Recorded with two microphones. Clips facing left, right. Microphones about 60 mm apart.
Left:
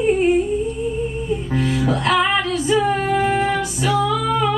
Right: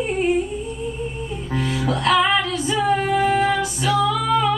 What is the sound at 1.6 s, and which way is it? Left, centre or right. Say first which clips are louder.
Music: even; centre.